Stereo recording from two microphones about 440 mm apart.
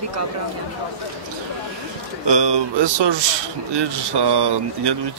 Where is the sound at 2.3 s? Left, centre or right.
Right.